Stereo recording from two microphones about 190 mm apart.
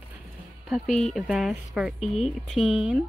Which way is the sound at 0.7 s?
Centre (ahead or behind).